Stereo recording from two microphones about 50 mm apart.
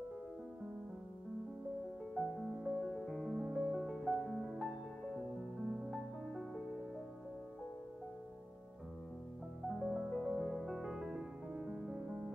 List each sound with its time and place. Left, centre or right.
2.1 s music: centre
4.6 s music: centre
9.8 s music: centre